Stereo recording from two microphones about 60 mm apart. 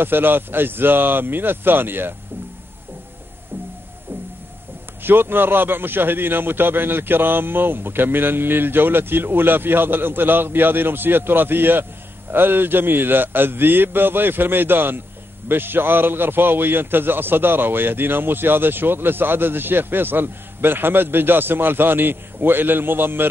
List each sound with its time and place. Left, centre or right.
0.0 s a man's voice: right
5.0 s a man's voice: right